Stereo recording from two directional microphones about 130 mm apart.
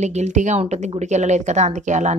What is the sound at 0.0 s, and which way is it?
A woman's voice, 60° right (ahead or behind).